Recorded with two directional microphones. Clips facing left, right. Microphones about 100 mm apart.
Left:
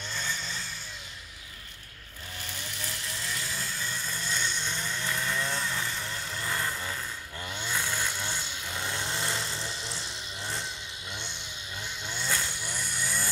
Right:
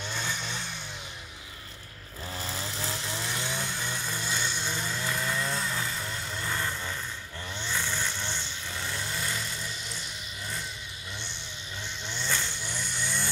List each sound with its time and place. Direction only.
0.1 s vehicle: 15° right (ahead or behind)
2.7 s chainsaw: 30° right (ahead or behind)
3.1 s vehicle: 25° right (ahead or behind); by 10.0 s 30° left (ahead or behind)
12.1 s vehicle: 10° left (ahead or behind)